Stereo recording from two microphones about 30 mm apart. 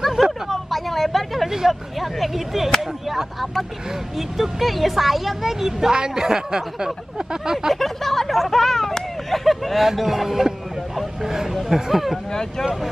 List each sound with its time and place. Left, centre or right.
0.5 s vehicle: centre
1.7 s speech: centre
5.9 s speech: right
7.7 s hubbub: centre
9.9 s speech: centre
11.5 s speech: centre
12.3 s speech: left